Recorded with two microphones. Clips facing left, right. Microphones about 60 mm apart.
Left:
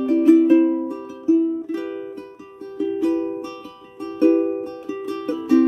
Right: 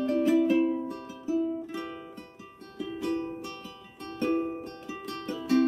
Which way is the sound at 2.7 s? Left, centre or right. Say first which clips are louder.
Left 11 dB; centre.